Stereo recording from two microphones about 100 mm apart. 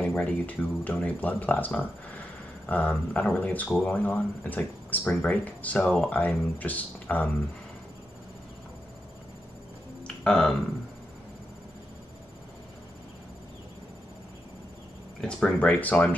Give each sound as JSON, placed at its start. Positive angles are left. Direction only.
{"t": 0.0, "sound": "speech", "side_deg": 15}
{"t": 10.0, "sound": "music", "side_deg": 5}
{"t": 15.1, "sound": "speech", "side_deg": 10}